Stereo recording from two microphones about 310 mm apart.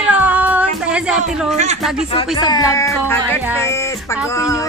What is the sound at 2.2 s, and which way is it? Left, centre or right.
Speech, centre.